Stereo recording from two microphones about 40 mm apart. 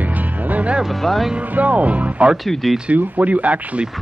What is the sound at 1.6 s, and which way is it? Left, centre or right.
Speech, right.